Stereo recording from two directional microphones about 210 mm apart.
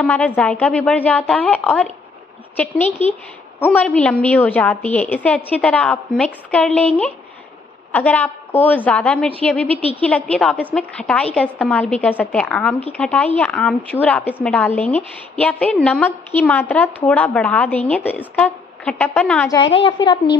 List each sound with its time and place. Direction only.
0.0 s a woman's voice: 5° left (ahead or behind)
19.5 s a woman's voice: 25° left (ahead or behind)